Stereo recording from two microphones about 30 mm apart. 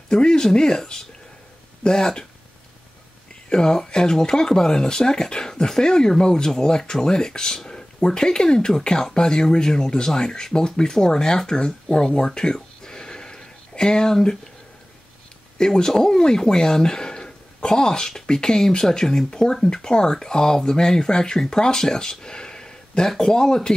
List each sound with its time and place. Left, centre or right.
0.1 s speech: left
3.4 s speech: left
12.4 s a sound: left
15.5 s speech: left
22.2 s a sound: left
23.0 s speech: left